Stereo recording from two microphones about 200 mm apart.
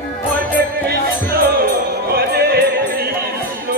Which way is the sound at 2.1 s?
50° right (ahead or behind).